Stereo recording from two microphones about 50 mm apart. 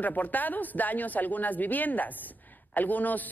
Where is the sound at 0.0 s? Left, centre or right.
Left.